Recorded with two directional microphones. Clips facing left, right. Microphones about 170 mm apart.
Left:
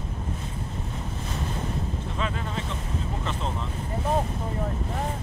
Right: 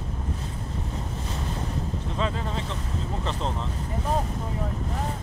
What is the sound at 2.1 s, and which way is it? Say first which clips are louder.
Speech: right 2 dB; 25° right (ahead or behind).